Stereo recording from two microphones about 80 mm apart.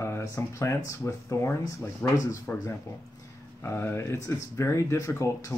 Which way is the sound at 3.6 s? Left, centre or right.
Left.